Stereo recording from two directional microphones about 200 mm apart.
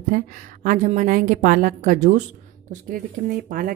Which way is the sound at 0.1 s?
40° right (ahead or behind).